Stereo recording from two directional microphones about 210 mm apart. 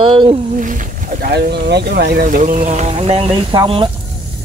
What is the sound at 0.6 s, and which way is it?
Speech, 40° right (ahead or behind).